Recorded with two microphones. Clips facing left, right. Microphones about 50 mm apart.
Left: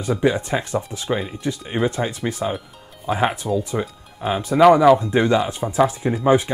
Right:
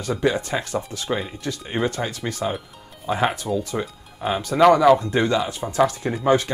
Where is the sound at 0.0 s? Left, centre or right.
Centre.